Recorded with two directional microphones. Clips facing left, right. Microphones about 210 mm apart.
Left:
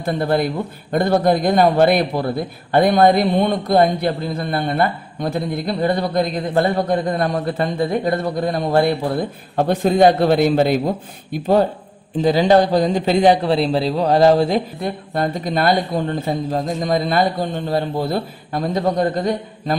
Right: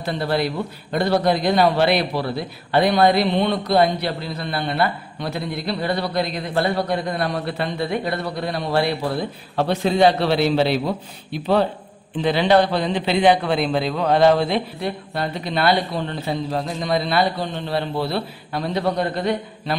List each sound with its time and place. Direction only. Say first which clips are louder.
0.0 s a man's voice: left 3 dB; 50° left (ahead or behind)